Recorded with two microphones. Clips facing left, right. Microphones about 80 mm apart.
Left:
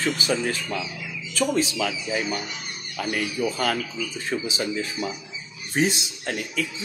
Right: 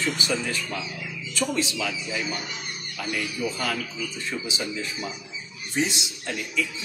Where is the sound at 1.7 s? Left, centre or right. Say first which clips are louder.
Left 3 dB; left.